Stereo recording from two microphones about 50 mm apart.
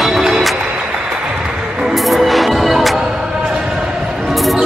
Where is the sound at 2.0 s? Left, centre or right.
Centre.